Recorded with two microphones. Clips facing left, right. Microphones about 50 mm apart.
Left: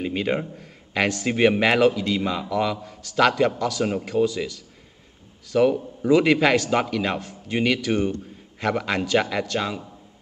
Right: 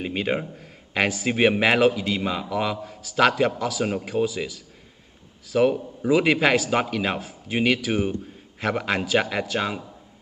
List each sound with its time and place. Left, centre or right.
0.0 s a man's voice: centre